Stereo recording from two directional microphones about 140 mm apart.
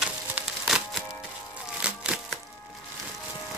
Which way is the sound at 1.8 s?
10° right (ahead or behind).